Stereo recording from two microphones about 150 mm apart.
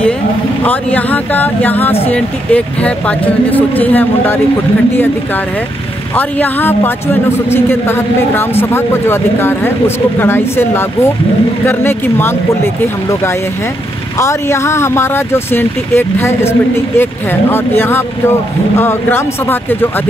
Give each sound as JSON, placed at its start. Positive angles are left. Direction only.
{"t": 0.7, "sound": "a man's voice", "side_deg": 10}
{"t": 6.1, "sound": "a man's voice", "side_deg": 10}
{"t": 14.2, "sound": "a man's voice", "side_deg": 15}